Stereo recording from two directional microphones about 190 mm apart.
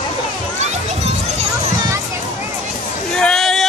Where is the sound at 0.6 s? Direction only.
35° right (ahead or behind).